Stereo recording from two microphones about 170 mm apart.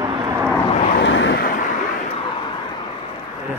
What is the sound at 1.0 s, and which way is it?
Vehicle, 90° left.